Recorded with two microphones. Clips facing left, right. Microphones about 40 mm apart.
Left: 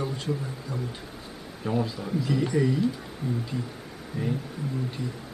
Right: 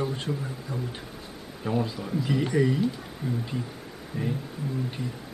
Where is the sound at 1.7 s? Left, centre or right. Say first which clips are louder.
Even; centre.